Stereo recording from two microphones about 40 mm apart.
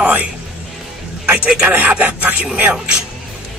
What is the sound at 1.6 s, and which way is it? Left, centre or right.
Speech, right.